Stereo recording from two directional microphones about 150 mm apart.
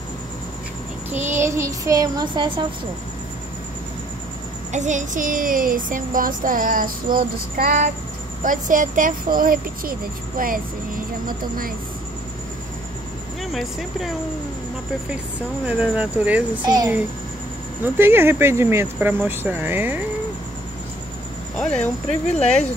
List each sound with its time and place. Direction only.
1.1 s speech: 15° right (ahead or behind); by 2.6 s 30° right (ahead or behind)
4.7 s speech: 55° right (ahead or behind); by 11.7 s 70° right (ahead or behind)
13.4 s speech: centre (ahead or behind)
15.6 s speech: 10° right (ahead or behind)
16.6 s speech: 25° right (ahead or behind)
17.8 s speech: 15° right (ahead or behind)
21.5 s speech: 5° left (ahead or behind)